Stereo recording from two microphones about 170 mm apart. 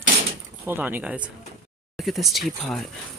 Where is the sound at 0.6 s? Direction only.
10° right (ahead or behind).